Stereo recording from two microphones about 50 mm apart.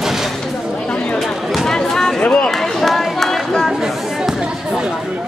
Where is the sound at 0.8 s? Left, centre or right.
Centre.